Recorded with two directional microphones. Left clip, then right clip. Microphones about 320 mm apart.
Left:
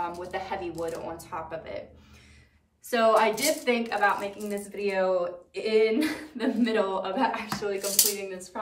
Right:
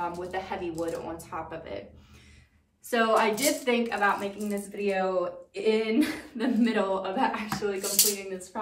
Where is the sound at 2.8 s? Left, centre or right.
Centre.